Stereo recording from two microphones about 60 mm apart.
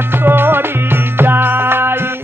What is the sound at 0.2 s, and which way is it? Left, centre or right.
Music, right.